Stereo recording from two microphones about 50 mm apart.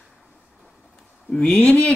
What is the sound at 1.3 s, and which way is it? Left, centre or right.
Speech, centre.